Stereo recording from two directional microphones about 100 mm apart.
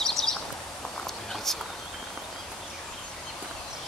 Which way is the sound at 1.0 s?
5° left (ahead or behind).